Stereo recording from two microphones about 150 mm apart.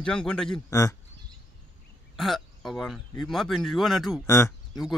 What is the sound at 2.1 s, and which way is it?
Speech, centre (ahead or behind).